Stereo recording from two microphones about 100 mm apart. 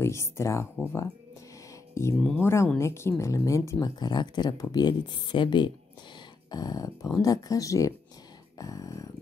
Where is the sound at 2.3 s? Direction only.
25° left (ahead or behind).